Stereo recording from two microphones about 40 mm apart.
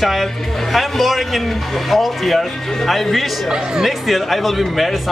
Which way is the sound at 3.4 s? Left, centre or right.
Centre.